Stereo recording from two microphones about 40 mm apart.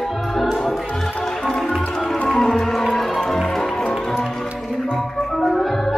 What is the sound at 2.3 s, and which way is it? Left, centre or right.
Music, centre.